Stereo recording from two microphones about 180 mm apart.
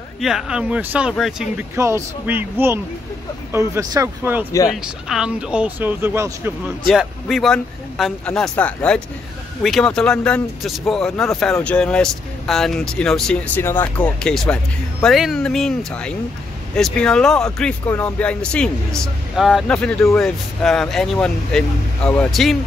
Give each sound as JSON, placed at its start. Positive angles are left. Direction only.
{"t": 0.2, "sound": "speech", "side_deg": 0}
{"t": 1.8, "sound": "speech", "side_deg": -15}
{"t": 4.5, "sound": "speech", "side_deg": 15}
{"t": 5.0, "sound": "speech", "side_deg": -5}
{"t": 6.9, "sound": "speech", "side_deg": 0}